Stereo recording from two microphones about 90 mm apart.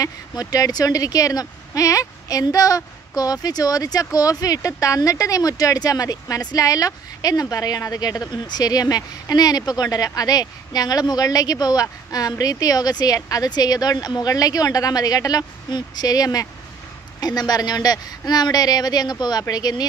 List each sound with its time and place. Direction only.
0.0 s a woman's voice: 45° left (ahead or behind)